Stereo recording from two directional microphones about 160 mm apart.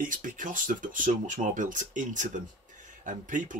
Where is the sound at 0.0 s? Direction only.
55° right (ahead or behind).